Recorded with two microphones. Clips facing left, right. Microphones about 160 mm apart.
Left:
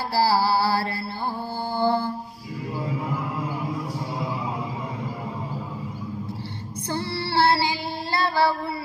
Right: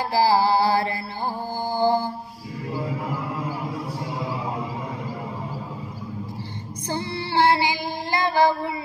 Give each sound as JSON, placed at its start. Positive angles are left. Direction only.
{"t": 0.1, "sound": "music", "side_deg": -15}
{"t": 1.8, "sound": "mantra", "side_deg": -15}
{"t": 6.9, "sound": "child singing", "side_deg": -15}